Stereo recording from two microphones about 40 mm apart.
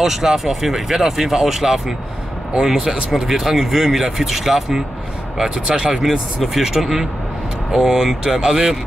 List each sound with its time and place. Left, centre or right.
0.0 s speech: centre
6.0 s speech: centre